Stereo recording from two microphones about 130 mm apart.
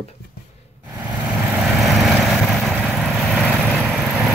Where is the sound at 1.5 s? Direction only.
Centre (ahead or behind).